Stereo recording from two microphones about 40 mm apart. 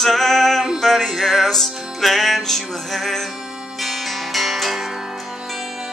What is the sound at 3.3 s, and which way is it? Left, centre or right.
Music, centre.